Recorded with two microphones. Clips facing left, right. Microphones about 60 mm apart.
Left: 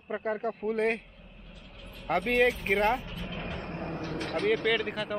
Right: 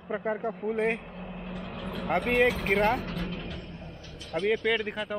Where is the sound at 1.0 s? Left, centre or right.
Right.